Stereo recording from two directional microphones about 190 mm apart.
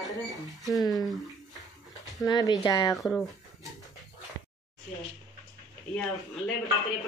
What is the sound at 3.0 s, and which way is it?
Speech, 5° left (ahead or behind).